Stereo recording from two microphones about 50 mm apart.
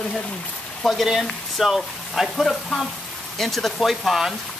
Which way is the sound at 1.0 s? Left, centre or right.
Centre.